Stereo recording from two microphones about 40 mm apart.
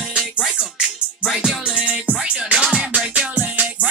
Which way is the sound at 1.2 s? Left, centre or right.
Centre.